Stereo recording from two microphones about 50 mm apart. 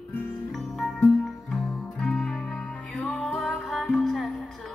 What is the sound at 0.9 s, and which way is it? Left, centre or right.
Music, centre.